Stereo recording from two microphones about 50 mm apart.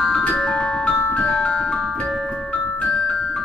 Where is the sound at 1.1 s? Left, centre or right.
Left.